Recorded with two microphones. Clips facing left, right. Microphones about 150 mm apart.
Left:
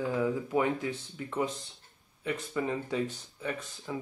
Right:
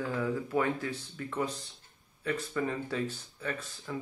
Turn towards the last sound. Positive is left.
turn(degrees=15)  # may be behind; listen again after turning